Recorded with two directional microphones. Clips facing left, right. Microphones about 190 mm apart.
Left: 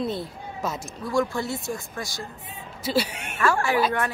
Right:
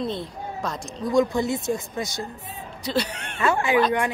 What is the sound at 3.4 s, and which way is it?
Speech, 20° right (ahead or behind).